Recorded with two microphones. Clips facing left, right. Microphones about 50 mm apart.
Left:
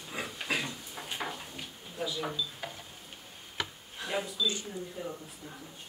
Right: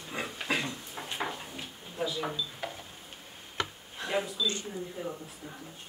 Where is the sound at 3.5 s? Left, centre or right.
Centre.